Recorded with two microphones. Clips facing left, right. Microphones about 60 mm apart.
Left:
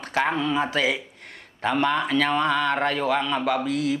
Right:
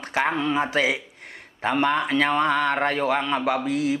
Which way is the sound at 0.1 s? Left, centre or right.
Centre.